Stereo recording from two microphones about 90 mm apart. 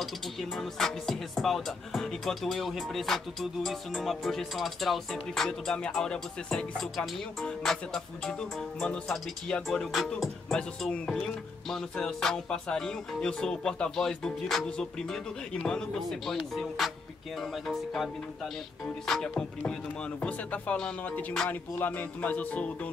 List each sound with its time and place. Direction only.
0.0 s music: 5° left (ahead or behind)